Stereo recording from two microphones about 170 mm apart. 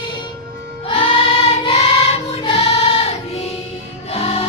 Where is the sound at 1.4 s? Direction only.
35° left (ahead or behind).